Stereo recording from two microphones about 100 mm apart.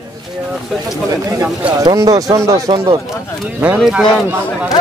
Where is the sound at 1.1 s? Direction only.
35° right (ahead or behind).